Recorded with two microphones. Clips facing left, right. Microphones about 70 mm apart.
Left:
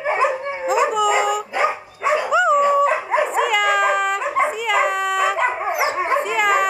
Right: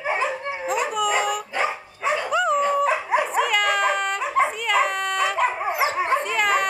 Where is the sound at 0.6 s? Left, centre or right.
Centre.